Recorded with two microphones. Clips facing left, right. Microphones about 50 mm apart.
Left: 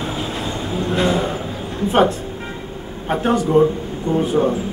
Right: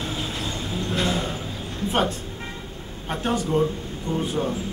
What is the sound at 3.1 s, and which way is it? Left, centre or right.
Speech, centre.